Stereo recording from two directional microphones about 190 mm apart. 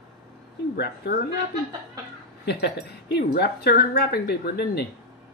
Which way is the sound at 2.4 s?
60° left (ahead or behind).